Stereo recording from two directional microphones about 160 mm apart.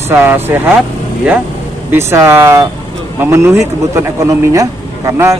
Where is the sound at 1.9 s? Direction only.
15° right (ahead or behind).